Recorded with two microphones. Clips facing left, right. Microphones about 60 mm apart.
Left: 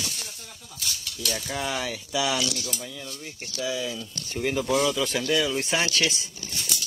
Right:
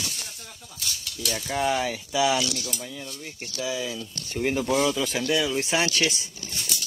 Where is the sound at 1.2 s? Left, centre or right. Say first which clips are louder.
Right 4 dB; centre.